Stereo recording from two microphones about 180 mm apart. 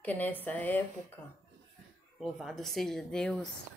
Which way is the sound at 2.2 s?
Centre (ahead or behind).